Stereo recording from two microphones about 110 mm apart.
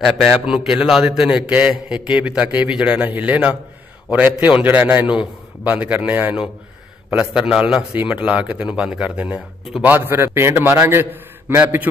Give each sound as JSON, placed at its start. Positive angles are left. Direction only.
{"t": 0.0, "sound": "a man's voice", "side_deg": -5}